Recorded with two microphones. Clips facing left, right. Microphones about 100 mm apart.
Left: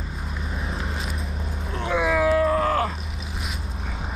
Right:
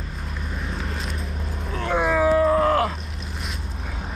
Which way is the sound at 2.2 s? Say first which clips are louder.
Right 4 dB; 25° right (ahead or behind).